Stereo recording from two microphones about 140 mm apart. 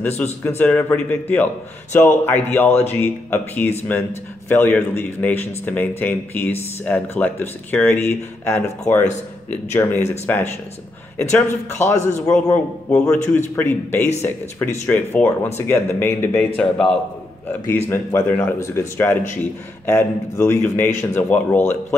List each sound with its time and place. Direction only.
0.2 s a man's voice: 15° left (ahead or behind)
13.6 s speech: 15° left (ahead or behind)
16.5 s a man's voice: 5° left (ahead or behind)
17.5 s speech: 15° left (ahead or behind)